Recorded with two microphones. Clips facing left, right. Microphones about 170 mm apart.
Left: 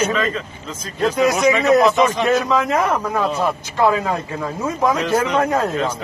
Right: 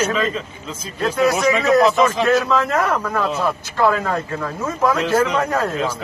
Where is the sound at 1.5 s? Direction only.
Centre (ahead or behind).